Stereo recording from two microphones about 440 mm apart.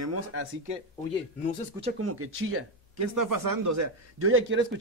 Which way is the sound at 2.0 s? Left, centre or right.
Right.